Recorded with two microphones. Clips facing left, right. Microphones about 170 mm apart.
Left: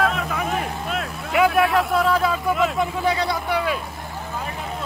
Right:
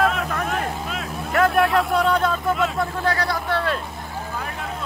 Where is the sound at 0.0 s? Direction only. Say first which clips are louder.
Right 1 dB; centre (ahead or behind).